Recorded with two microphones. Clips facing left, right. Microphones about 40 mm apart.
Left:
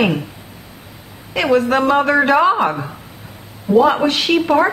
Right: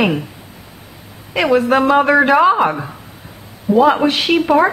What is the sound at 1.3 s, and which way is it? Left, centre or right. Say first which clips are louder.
Speech: right 1 dB; centre.